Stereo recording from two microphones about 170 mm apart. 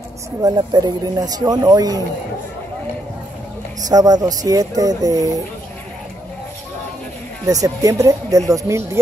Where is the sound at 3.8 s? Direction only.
20° right (ahead or behind).